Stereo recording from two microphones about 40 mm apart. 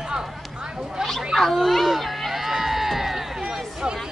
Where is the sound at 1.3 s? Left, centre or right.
Centre.